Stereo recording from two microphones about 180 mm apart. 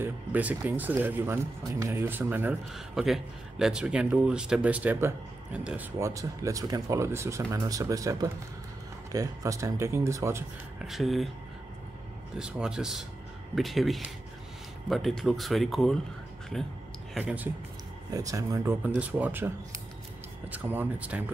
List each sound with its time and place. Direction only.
0.0 s speech: 10° right (ahead or behind)
10.8 s speech: centre (ahead or behind)
12.4 s speech: 5° right (ahead or behind)
17.1 s speech: 10° right (ahead or behind)
18.1 s speech: 20° right (ahead or behind)